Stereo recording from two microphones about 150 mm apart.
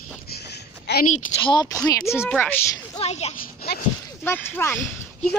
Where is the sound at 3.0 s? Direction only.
45° left (ahead or behind).